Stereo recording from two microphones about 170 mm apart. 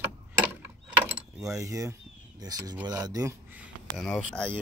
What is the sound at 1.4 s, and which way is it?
Mechanisms, 20° right (ahead or behind).